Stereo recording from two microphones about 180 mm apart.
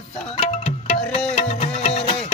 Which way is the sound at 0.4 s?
35° left (ahead or behind).